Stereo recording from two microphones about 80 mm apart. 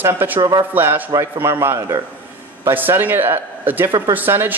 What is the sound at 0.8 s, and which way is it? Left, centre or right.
A man's voice, right.